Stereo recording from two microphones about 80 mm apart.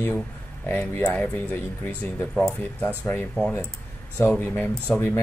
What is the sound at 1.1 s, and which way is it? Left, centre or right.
Speech, centre.